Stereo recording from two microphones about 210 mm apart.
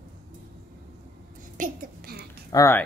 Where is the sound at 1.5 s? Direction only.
45° right (ahead or behind).